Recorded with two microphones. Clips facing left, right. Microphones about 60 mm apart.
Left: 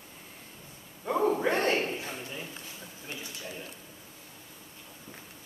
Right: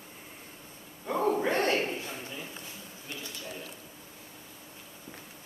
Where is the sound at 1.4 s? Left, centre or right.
Centre.